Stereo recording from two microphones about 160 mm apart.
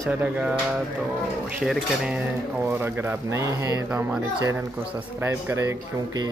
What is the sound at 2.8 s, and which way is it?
Speech, 15° right (ahead or behind).